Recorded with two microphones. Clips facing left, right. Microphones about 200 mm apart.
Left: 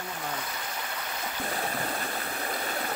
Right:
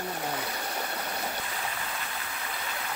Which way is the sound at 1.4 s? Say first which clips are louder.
Left 5 dB; 45° left (ahead or behind).